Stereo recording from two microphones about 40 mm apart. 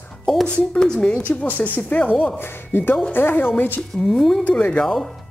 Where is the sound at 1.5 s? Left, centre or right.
Left.